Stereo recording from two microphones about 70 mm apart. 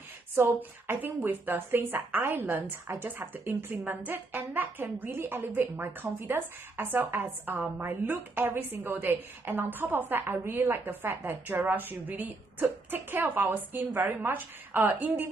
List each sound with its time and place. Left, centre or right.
0.4 s a woman's voice: right